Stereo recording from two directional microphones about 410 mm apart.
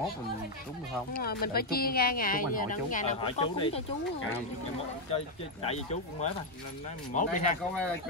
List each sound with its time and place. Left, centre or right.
1.2 s speech: left
5.1 s speech: centre